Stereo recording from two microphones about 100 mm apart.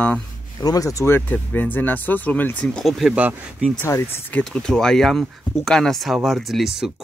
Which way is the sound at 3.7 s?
25° left (ahead or behind).